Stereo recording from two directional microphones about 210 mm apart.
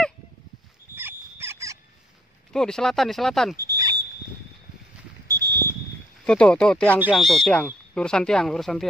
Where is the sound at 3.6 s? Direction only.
15° right (ahead or behind).